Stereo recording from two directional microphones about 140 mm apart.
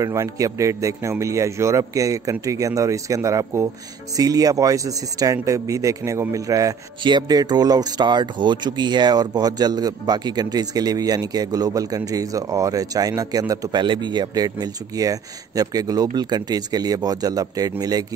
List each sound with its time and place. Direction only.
0.0 s speech: 25° right (ahead or behind)